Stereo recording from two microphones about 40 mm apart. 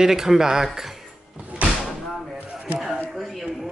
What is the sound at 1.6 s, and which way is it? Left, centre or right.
Door, right.